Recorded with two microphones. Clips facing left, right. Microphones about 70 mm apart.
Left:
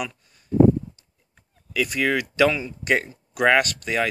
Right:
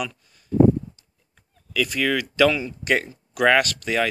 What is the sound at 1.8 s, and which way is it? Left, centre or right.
Speech, left.